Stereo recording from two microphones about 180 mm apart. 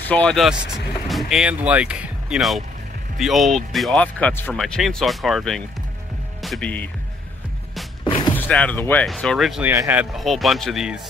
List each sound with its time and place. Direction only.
0.1 s speech: 5° left (ahead or behind)
4.6 s speech: centre (ahead or behind)
8.0 s music: 25° left (ahead or behind)
8.4 s speech: 5° left (ahead or behind)